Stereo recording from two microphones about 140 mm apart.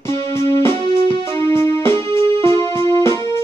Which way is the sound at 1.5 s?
20° left (ahead or behind).